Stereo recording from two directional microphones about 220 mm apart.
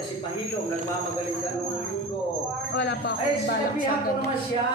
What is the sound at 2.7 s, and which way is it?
Speech, 45° left (ahead or behind).